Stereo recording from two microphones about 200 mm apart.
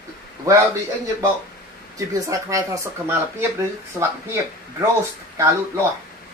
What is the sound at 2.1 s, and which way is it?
Speech, 15° right (ahead or behind).